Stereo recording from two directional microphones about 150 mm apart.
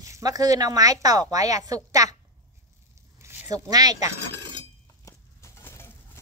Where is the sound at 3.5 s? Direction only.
25° right (ahead or behind).